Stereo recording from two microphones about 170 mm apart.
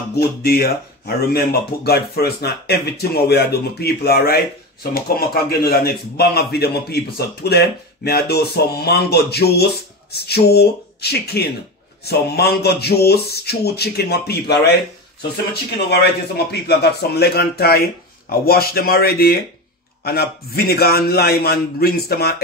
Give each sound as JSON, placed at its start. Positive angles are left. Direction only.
{"t": 0.2, "sound": "a man's voice", "side_deg": 65}
{"t": 15.9, "sound": "a man's voice", "side_deg": 75}